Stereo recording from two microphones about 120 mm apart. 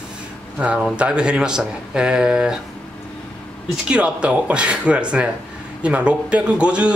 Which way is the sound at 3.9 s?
10° right (ahead or behind).